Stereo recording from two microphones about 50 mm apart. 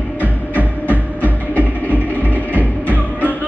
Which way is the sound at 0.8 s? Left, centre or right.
Left.